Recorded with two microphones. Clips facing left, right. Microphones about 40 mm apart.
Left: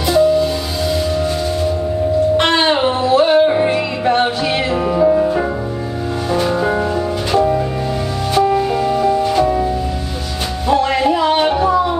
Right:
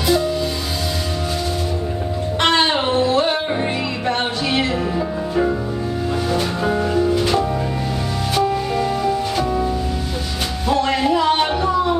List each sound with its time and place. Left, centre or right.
2.3 s music: centre
4.9 s music: left
6.7 s music: centre
8.5 s music: centre
10.7 s music: centre